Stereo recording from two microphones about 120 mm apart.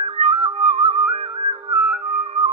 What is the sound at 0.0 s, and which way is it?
Music, 50° right (ahead or behind).